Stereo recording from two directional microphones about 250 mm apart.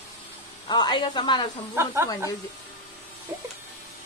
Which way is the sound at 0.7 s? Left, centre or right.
Centre.